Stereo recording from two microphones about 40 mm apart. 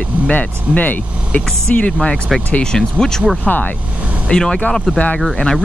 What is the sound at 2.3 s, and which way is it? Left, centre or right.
Speech, centre.